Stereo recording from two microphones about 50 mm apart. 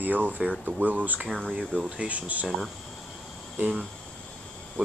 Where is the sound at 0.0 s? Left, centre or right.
Right.